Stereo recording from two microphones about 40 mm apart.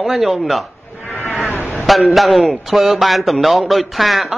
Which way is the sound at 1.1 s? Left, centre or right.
Left.